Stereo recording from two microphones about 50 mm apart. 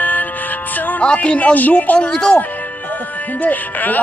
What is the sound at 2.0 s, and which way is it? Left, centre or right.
Speech, centre.